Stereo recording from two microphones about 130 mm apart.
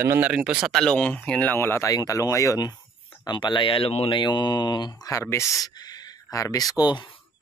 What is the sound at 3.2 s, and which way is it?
Speech, 35° left (ahead or behind).